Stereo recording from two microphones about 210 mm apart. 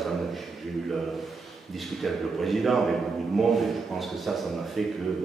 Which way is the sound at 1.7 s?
Centre (ahead or behind).